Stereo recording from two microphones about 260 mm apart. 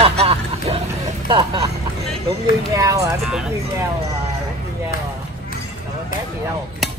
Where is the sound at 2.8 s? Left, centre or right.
Centre.